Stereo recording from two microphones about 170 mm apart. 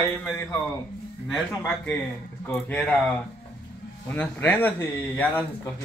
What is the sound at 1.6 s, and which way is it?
Speech, 10° left (ahead or behind).